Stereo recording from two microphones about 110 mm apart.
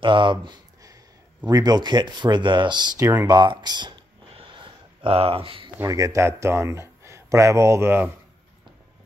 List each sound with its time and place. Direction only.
0.0 s speech: 50° right (ahead or behind)
3.0 s speech: 25° right (ahead or behind)
3.3 s a sound: 40° right (ahead or behind); by 5.7 s 55° right (ahead or behind)
5.9 s speech: 30° right (ahead or behind)